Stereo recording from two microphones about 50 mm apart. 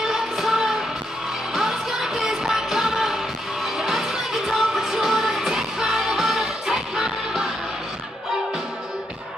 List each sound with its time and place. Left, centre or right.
0.0 s music: centre